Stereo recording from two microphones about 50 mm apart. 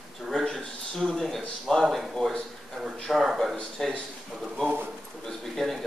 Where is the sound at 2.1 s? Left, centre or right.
Centre.